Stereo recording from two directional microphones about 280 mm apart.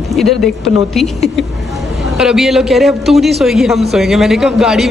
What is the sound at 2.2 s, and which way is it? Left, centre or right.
A man's voice, centre.